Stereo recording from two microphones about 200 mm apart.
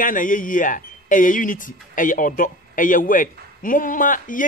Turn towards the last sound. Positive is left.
turn(degrees=40)  # may be behind; listen again after turning